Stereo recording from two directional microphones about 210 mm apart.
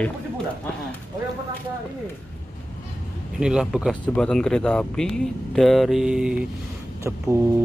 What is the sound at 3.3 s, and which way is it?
Speech, 5° right (ahead or behind).